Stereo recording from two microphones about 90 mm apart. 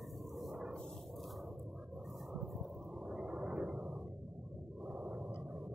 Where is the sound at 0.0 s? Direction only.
Centre (ahead or behind).